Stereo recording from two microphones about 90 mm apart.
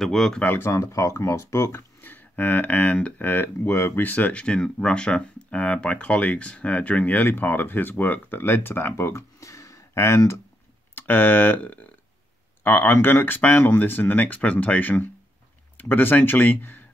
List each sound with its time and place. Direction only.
0.0 s speech: 5° left (ahead or behind)
0.4 s speech: 20° left (ahead or behind)
0.7 s speech: 35° left (ahead or behind)